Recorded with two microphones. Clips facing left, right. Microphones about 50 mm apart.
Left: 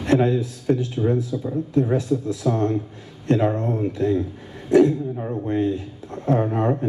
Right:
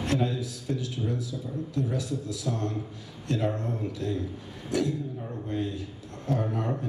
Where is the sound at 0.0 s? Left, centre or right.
Left.